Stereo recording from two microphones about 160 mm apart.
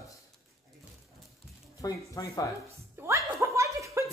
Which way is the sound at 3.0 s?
15° right (ahead or behind).